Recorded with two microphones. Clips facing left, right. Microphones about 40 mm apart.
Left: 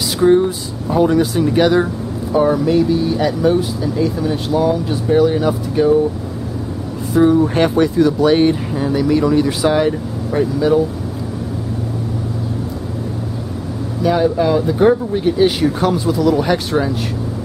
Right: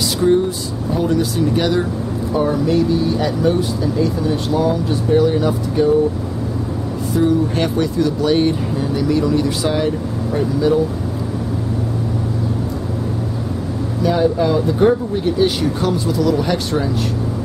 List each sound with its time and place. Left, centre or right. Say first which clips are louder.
0.8 s speech: left 4 dB; centre
7.2 s speech: left 4 dB; centre
14.0 s speech: left 1 dB; centre